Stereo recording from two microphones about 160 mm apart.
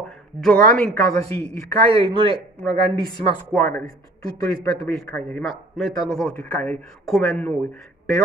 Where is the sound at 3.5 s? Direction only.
5° left (ahead or behind).